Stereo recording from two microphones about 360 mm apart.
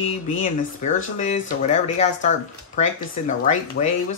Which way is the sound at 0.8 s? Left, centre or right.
Left.